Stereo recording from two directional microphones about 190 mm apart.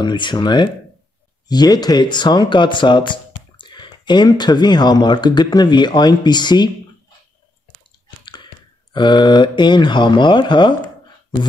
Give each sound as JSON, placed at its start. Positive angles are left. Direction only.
{"t": 0.0, "sound": "speech", "side_deg": 25}
{"t": 8.9, "sound": "speech", "side_deg": 25}